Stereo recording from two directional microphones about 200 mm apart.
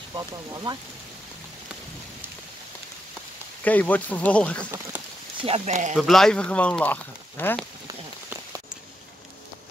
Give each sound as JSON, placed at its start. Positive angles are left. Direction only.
{"t": 0.1, "sound": "speech", "side_deg": -20}
{"t": 3.6, "sound": "speech", "side_deg": 10}
{"t": 5.4, "sound": "speech", "side_deg": -30}
{"t": 5.9, "sound": "speech", "side_deg": 0}